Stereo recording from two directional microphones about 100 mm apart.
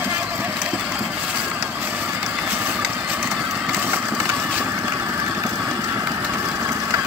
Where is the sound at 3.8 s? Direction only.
20° right (ahead or behind).